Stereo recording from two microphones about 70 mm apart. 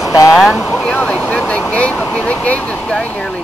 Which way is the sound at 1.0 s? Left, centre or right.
Centre.